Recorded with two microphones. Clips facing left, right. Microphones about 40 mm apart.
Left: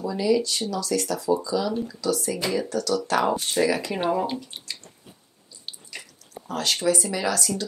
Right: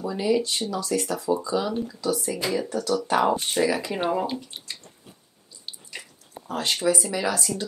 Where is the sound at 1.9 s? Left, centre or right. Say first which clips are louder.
Left 1 dB; right.